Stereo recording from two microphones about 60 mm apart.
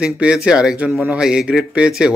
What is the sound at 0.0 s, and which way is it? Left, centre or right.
Speech, centre.